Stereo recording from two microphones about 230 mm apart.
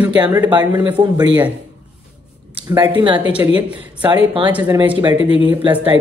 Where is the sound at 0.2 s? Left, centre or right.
Centre.